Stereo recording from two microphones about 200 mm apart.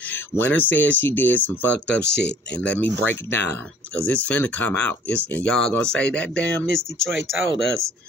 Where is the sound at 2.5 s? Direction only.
5° left (ahead or behind).